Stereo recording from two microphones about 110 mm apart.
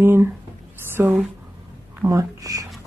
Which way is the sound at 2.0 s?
25° right (ahead or behind).